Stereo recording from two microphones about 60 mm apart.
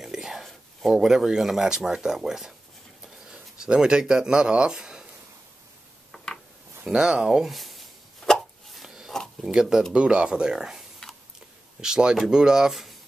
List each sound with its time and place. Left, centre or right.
0.0 s speech: centre
6.1 s a sound: centre
6.8 s speech: centre
7.4 s a sound: centre
9.4 s speech: centre
11.0 s tick-tock: centre
11.8 s speech: centre